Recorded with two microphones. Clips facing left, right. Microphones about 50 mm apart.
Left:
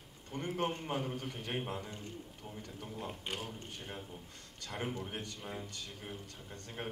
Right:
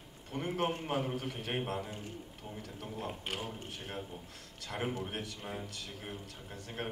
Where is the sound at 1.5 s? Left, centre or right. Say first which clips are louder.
Right 3 dB; centre.